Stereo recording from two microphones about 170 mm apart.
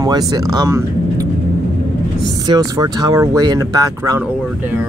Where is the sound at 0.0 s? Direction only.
20° right (ahead or behind).